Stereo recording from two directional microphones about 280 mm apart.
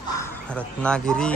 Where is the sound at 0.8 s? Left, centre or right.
Centre.